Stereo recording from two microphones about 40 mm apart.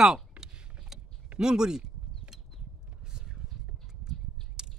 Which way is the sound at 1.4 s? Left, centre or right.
Centre.